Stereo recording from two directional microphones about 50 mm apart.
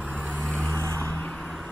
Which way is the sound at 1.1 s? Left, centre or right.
Left.